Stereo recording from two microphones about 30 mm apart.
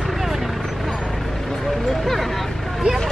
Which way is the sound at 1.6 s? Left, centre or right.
Centre.